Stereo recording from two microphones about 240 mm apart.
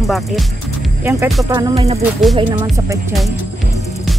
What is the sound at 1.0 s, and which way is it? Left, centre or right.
Music, centre.